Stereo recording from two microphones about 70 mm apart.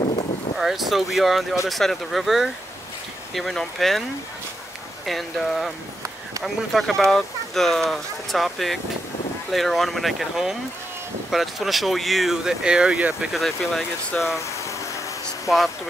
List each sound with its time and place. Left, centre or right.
0.6 s speech: centre
5.0 s speech: centre
13.3 s speech: centre
14.4 s vehicle: left
15.4 s speech: centre